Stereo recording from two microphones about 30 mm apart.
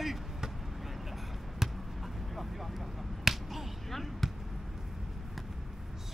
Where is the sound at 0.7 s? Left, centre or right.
Centre.